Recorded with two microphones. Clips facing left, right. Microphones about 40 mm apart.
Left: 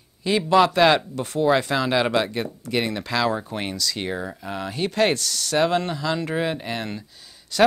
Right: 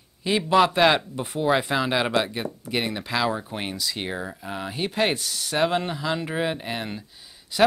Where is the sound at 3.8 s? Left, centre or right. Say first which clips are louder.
Left 3 dB; centre.